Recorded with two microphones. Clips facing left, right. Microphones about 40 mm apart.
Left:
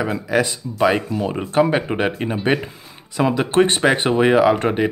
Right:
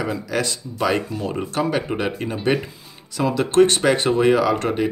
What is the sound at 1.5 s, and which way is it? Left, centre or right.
Speech, left.